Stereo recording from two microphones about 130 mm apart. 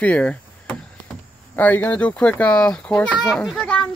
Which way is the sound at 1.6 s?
10° left (ahead or behind).